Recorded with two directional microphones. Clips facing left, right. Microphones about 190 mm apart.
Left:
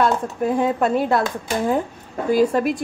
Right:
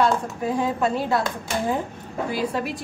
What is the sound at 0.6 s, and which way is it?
Speech, 55° left (ahead or behind).